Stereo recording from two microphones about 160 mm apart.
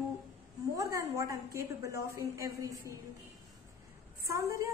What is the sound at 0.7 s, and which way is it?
A woman's voice, 20° right (ahead or behind).